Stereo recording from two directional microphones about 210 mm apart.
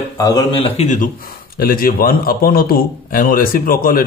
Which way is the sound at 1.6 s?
45° left (ahead or behind).